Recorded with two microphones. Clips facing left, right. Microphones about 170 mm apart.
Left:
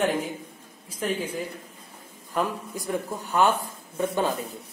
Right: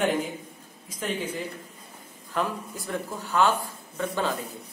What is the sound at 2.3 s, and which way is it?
A woman's voice, 10° left (ahead or behind).